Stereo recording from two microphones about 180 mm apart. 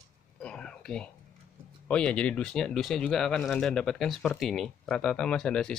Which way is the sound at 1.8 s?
5° left (ahead or behind).